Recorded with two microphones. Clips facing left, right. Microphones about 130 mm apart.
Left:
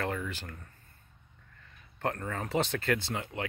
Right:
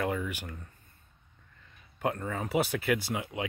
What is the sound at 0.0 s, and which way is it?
Speech, 10° right (ahead or behind).